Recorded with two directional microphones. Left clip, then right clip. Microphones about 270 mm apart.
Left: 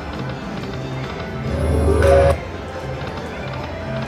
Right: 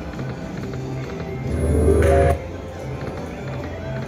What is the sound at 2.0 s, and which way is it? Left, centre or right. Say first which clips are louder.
Music: left 6 dB; left.